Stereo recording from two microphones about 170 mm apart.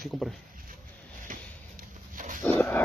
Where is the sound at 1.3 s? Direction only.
50° right (ahead or behind).